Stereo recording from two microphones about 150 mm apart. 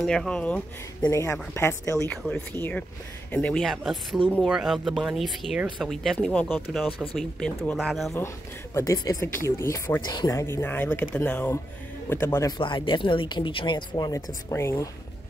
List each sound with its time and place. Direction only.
0.0 s speech: 5° left (ahead or behind)
1.0 s speech: 20° left (ahead or behind)
2.0 s speech: 10° left (ahead or behind)
8.7 s speech: 25° left (ahead or behind)
12.5 s speech: 35° left (ahead or behind)